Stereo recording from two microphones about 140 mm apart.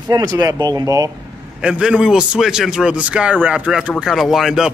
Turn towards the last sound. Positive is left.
turn(degrees=0)  # may be behind; listen again after turning